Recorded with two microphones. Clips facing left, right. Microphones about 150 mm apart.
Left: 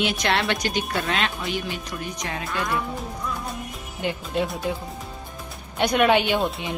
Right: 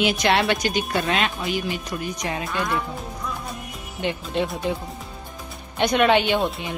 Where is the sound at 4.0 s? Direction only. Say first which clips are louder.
Right 1 dB; 5° left (ahead or behind).